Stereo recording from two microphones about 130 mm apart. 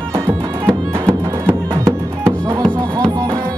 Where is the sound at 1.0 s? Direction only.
20° right (ahead or behind).